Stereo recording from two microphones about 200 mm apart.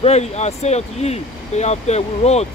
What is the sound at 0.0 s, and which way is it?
Speech, 35° left (ahead or behind).